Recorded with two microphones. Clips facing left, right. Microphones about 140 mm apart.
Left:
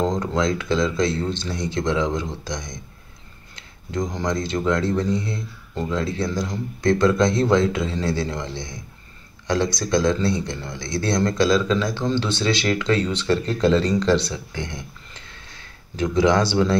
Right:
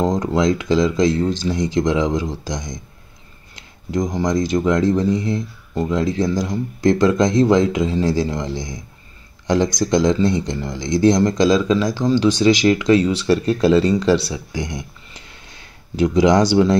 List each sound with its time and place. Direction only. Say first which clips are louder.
0.0 s speech: right 4 dB; 15° right (ahead or behind)
3.9 s speech: right 5 dB; 15° right (ahead or behind)